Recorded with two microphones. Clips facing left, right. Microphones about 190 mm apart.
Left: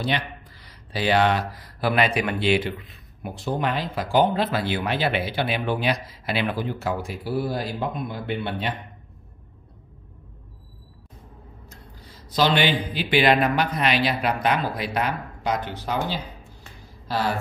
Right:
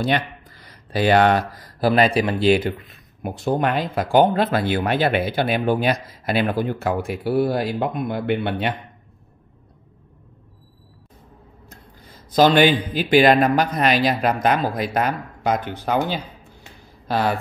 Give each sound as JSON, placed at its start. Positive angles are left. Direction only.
{"t": 0.0, "sound": "speech", "side_deg": -50}
{"t": 12.3, "sound": "speech", "side_deg": -45}